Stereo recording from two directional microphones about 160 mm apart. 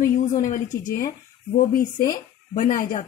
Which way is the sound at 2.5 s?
55° left (ahead or behind).